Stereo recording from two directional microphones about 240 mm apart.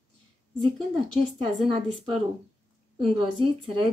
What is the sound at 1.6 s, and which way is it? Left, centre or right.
A woman's voice, right.